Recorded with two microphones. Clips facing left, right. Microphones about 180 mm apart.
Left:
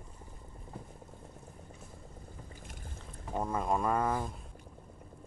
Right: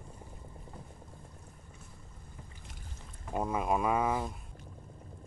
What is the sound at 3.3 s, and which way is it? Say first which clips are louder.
Speech: right 1 dB; 10° right (ahead or behind).